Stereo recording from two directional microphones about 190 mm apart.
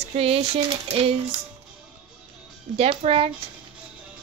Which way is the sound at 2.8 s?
30° right (ahead or behind).